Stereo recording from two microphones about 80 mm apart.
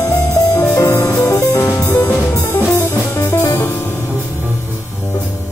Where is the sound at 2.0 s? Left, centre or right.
Left.